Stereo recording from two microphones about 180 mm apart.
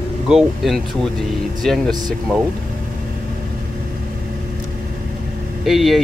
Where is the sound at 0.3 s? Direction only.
Centre (ahead or behind).